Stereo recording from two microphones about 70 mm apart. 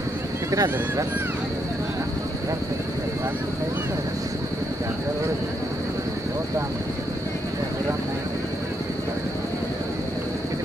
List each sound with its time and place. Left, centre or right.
0.5 s speech: right